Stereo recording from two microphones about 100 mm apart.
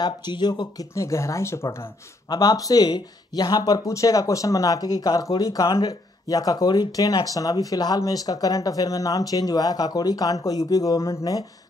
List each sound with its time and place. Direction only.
0.0 s speech: 45° left (ahead or behind)
0.9 s speech: 30° left (ahead or behind)
2.2 s speech: 40° left (ahead or behind)